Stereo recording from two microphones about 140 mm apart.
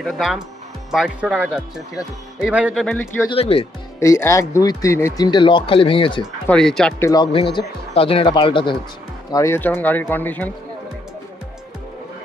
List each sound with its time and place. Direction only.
0.0 s speech: centre (ahead or behind)
2.7 s speech: centre (ahead or behind)
3.3 s speech: 45° left (ahead or behind)
4.0 s speech: 20° left (ahead or behind); by 6.2 s 35° left (ahead or behind)
6.4 s speech: 5° left (ahead or behind)
7.0 s speech: 20° left (ahead or behind)
7.3 s speech: 40° left (ahead or behind)
9.3 s speech: 20° left (ahead or behind)